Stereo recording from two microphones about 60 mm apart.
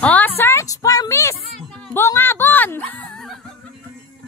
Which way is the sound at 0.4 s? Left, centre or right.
Left.